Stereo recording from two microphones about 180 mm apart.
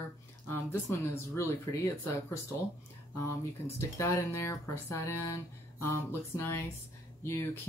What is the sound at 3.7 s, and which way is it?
Speech, 15° left (ahead or behind).